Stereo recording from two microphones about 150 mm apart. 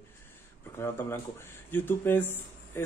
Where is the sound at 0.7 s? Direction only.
15° left (ahead or behind).